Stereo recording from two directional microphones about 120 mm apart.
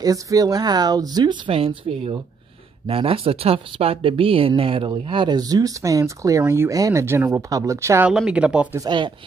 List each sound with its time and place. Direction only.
0.0 s speech: 30° right (ahead or behind)
8.3 s speech: 10° right (ahead or behind)
8.7 s speech: 40° right (ahead or behind)